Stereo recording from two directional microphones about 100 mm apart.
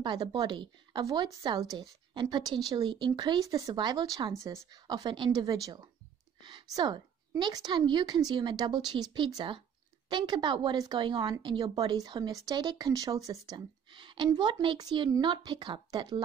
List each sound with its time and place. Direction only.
0.0 s a woman's voice: 50° right (ahead or behind)
13.9 s a sound: 55° right (ahead or behind)
14.3 s a woman's voice: 50° right (ahead or behind)
14.8 s a woman's voice: 45° right (ahead or behind)